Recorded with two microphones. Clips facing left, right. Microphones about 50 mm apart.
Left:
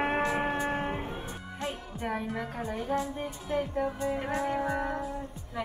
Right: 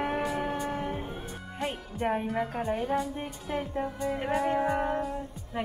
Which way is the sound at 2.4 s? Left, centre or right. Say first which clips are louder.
Right 5 dB; right.